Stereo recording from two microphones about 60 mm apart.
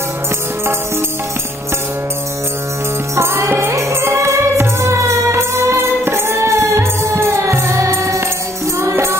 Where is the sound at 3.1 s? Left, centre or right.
Right.